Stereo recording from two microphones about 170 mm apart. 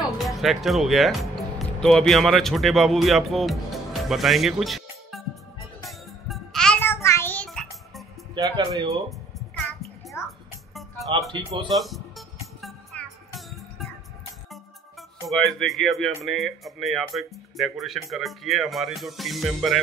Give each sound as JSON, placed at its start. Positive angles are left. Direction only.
{"t": 0.3, "sound": "speech", "side_deg": 0}
{"t": 5.9, "sound": "music", "side_deg": 0}
{"t": 8.4, "sound": "speech", "side_deg": -20}
{"t": 10.2, "sound": "music", "side_deg": 15}
{"t": 10.7, "sound": "music", "side_deg": 0}
{"t": 11.3, "sound": "speech", "side_deg": -30}
{"t": 11.7, "sound": "music", "side_deg": 0}
{"t": 16.3, "sound": "speech", "side_deg": 0}